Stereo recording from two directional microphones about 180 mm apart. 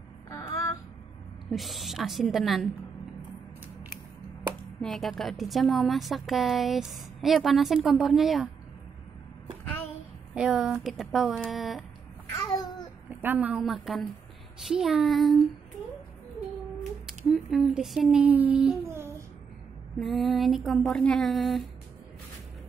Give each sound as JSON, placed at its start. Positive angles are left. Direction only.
{"t": 0.3, "sound": "a sound", "side_deg": 20}
{"t": 1.5, "sound": "a woman's voice", "side_deg": 0}
{"t": 4.8, "sound": "a woman's voice", "side_deg": 0}
{"t": 10.3, "sound": "a woman's voice", "side_deg": -5}
{"t": 12.3, "sound": "babbling", "side_deg": 20}
{"t": 13.2, "sound": "a woman's voice", "side_deg": -10}
{"t": 17.0, "sound": "speech", "side_deg": 0}
{"t": 20.0, "sound": "a woman's voice", "side_deg": 0}